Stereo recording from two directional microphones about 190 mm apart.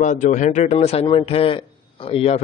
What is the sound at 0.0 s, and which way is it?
A man's voice, 40° left (ahead or behind).